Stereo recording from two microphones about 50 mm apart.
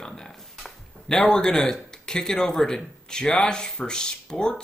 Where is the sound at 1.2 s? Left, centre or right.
Centre.